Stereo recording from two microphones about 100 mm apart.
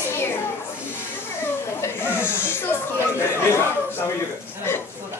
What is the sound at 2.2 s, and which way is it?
Snake, 25° left (ahead or behind).